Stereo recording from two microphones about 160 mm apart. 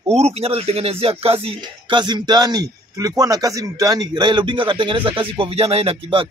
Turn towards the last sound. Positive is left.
turn(degrees=-35)  # may be behind; listen again after turning